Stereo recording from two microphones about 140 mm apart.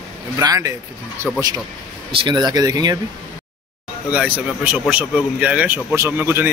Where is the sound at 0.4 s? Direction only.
25° right (ahead or behind).